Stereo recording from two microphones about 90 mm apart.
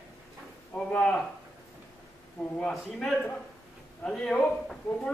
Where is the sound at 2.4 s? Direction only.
15° left (ahead or behind).